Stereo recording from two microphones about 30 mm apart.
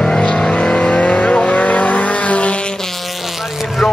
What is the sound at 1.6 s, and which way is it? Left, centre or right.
Vehicle, left.